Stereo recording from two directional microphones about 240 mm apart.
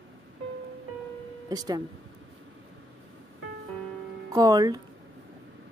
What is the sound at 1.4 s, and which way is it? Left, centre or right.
Music, centre.